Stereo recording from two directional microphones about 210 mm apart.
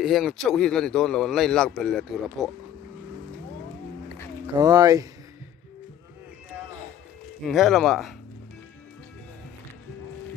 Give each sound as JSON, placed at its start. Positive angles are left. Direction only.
{"t": 0.0, "sound": "a man's voice", "side_deg": 0}
{"t": 4.6, "sound": "speech", "side_deg": -15}
{"t": 7.4, "sound": "a man's voice", "side_deg": 0}